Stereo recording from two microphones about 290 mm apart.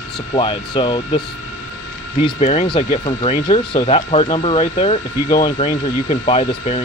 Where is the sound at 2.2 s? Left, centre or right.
Left.